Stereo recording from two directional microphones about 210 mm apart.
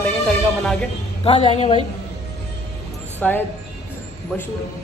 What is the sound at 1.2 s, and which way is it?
Speech, 25° left (ahead or behind).